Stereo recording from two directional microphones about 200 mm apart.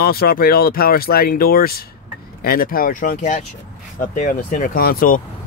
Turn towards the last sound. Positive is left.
turn(degrees=45)  # may be behind; listen again after turning